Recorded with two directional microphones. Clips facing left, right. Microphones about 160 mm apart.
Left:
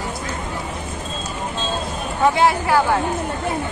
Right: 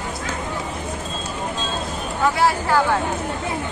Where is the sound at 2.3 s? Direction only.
15° left (ahead or behind).